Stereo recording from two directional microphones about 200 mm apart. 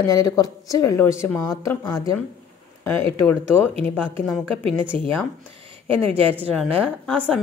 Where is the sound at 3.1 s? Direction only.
10° left (ahead or behind).